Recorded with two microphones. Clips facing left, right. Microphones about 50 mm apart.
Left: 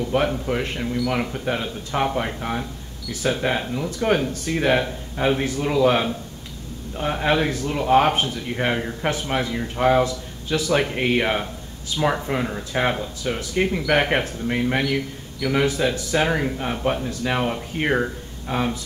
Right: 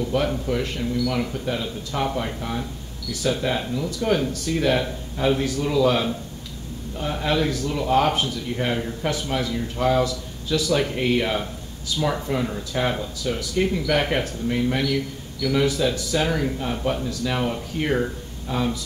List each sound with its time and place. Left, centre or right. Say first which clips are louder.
0.1 s speech: left 2 dB; left